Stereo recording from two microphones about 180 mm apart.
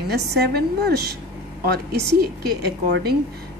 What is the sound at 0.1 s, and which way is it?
A woman's voice, 65° right (ahead or behind).